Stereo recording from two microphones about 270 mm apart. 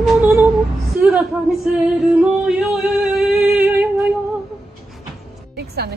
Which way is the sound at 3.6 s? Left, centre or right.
Centre.